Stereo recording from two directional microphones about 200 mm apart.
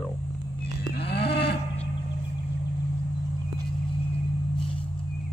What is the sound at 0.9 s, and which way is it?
Cattle, 55° left (ahead or behind).